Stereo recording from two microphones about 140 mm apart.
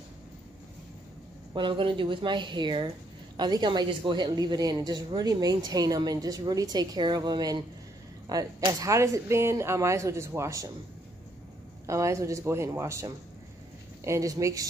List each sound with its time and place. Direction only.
1.5 s speech: 35° right (ahead or behind)
11.8 s speech: 20° right (ahead or behind)